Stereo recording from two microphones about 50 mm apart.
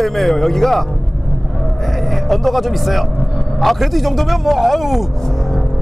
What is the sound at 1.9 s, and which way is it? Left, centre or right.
Speech, centre.